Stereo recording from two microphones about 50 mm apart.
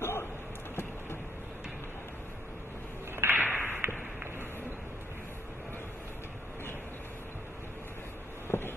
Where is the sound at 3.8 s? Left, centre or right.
Right.